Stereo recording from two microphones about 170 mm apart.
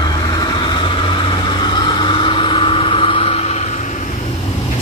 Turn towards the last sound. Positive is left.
turn(degrees=40)  # may be behind; listen again after turning